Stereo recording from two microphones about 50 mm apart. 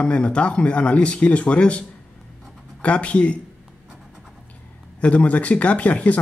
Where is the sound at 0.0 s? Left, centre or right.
Left.